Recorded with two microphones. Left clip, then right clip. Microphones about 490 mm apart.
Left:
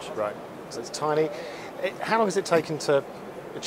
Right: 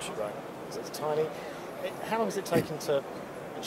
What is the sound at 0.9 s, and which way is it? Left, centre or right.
Speech, left.